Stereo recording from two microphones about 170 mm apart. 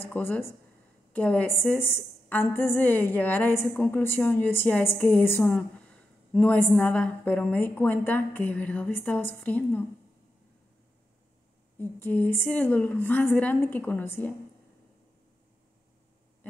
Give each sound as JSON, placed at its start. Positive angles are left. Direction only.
{"t": 0.1, "sound": "a woman's voice", "side_deg": 10}
{"t": 11.8, "sound": "a woman's voice", "side_deg": 10}